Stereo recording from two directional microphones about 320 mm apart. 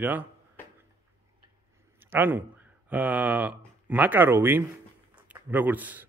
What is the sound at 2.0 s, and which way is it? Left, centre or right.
A man's voice, centre.